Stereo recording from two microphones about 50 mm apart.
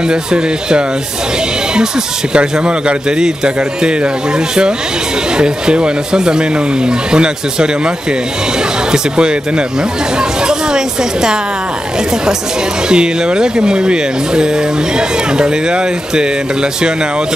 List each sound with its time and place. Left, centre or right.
0.0 s speech: centre
2.3 s speech: right
5.4 s speech: centre
8.9 s speech: centre
12.8 s speech: centre